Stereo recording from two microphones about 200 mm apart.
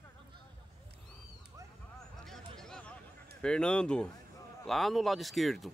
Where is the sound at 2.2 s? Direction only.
Centre (ahead or behind).